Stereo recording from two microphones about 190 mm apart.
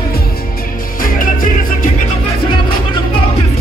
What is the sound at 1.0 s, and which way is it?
Music, 45° left (ahead or behind).